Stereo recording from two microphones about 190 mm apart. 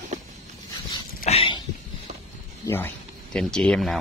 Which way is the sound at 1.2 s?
30° left (ahead or behind).